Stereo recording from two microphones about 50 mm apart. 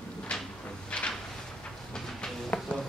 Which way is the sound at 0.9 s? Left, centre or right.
Centre.